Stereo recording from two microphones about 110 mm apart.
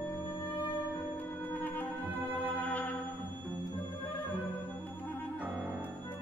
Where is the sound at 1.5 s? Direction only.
15° left (ahead or behind).